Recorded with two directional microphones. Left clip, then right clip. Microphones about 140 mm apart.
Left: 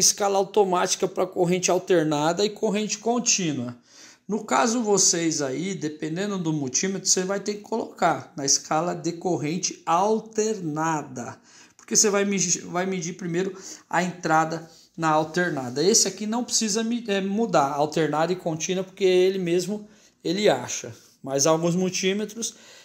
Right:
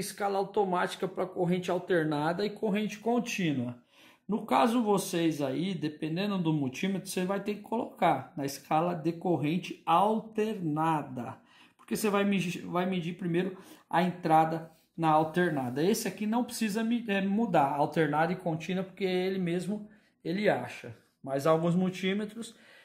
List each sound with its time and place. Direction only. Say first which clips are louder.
0.0 s a man's voice: left 10 dB; 40° left (ahead or behind); by 3.1 s 25° left (ahead or behind)
3.1 s speech: left 6 dB; 10° left (ahead or behind); by 22.5 s 25° left (ahead or behind)